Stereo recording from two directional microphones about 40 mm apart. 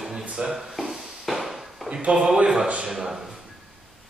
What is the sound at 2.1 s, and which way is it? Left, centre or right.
Speech, centre.